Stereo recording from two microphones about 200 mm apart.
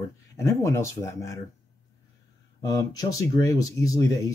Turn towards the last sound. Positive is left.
turn(degrees=15)  # may be behind; listen again after turning